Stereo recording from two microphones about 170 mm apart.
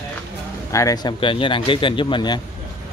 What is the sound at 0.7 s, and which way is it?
Speech, 20° left (ahead or behind).